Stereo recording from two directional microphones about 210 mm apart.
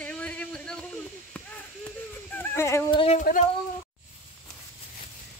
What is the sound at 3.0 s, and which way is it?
Speech, 35° left (ahead or behind).